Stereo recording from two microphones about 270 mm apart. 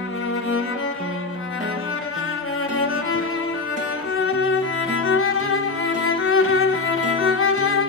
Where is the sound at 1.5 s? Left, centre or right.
Left.